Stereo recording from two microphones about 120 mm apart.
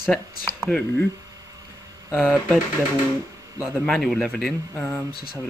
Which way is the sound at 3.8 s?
Centre (ahead or behind).